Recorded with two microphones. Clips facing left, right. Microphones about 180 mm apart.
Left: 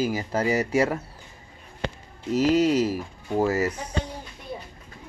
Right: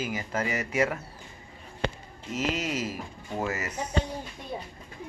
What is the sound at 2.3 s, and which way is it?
Speech, 35° left (ahead or behind).